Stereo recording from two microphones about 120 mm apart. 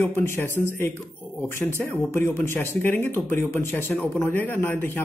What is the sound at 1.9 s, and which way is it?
Speech, 20° left (ahead or behind).